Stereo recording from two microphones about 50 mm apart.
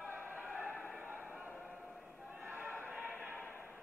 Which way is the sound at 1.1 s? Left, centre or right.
Right.